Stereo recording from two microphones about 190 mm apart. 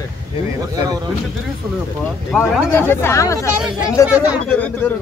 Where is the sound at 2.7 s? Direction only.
10° left (ahead or behind).